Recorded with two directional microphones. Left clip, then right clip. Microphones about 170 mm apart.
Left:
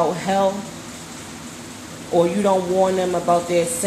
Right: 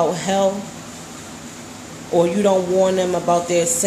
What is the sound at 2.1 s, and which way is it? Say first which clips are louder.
A woman's voice: right 1 dB; 15° right (ahead or behind).